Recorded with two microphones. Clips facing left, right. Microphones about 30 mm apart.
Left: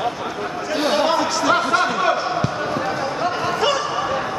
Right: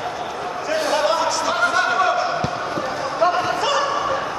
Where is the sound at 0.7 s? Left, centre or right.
Left.